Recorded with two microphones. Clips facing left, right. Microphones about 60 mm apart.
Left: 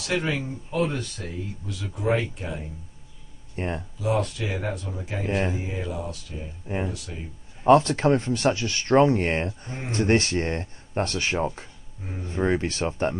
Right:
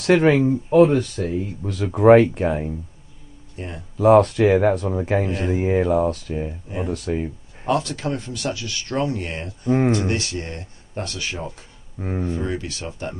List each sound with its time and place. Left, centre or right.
0.0 s speech: right
0.7 s speech: right
1.6 s speech: right
3.5 s speech: left
4.0 s speech: right
7.6 s speech: left
9.7 s speech: right
9.9 s speech: left
12.0 s speech: right
12.4 s speech: left